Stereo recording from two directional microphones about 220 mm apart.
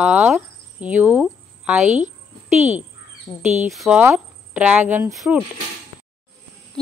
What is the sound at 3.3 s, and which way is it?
Speech, 20° left (ahead or behind).